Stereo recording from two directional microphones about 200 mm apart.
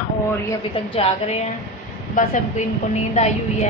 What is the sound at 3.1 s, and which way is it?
Speech, 35° left (ahead or behind).